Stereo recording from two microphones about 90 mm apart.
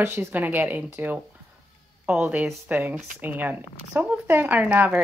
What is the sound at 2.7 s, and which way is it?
A woman's voice, 20° right (ahead or behind).